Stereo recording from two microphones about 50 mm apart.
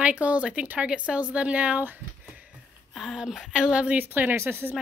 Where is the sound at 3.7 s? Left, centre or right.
Right.